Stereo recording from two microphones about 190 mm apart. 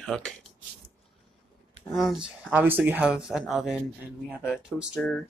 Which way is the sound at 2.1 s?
5° right (ahead or behind).